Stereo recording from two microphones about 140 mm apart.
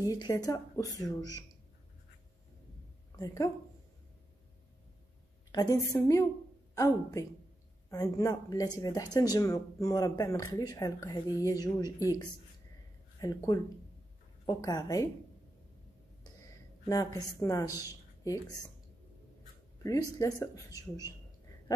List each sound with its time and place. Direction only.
0.0 s speech: 25° left (ahead or behind)
3.2 s speech: 25° left (ahead or behind)
5.5 s a woman's voice: 30° left (ahead or behind)
16.8 s speech: 25° left (ahead or behind)
19.8 s speech: 25° left (ahead or behind)